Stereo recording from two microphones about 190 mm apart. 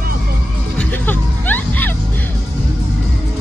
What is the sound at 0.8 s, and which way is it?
Music, 10° left (ahead or behind).